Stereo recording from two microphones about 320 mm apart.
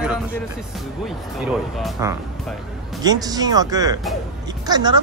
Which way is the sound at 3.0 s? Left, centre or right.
Centre.